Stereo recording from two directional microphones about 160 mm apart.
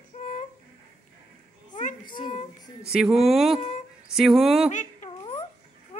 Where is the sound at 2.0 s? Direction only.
30° left (ahead or behind).